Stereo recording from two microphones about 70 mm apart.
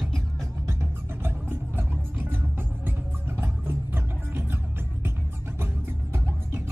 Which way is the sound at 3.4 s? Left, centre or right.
Right.